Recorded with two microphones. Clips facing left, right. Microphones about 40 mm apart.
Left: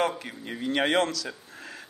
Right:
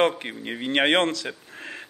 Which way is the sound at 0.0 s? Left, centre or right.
Right.